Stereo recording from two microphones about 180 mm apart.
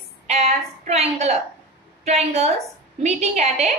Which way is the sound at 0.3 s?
35° right (ahead or behind).